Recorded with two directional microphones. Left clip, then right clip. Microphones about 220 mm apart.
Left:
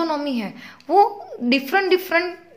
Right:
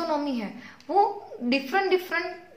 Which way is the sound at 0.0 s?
40° left (ahead or behind).